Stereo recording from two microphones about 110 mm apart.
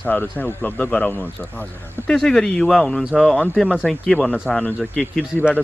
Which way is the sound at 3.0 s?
5° right (ahead or behind).